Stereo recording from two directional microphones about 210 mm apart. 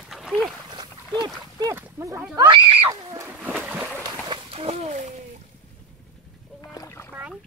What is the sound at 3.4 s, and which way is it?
Splash, 5° right (ahead or behind).